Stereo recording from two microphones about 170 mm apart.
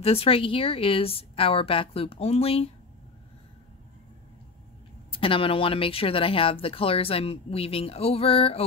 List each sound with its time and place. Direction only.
0.0 s speech: 35° left (ahead or behind)
5.1 s speech: 30° left (ahead or behind)